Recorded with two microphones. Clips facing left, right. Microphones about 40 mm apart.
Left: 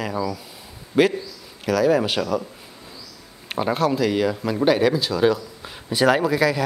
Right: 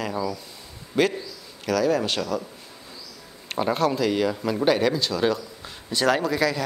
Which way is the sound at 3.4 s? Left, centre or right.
Centre.